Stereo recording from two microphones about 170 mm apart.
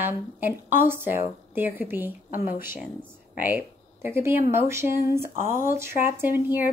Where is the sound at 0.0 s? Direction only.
10° right (ahead or behind).